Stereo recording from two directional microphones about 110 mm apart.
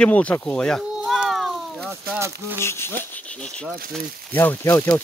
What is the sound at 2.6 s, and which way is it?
Speech, 25° left (ahead or behind).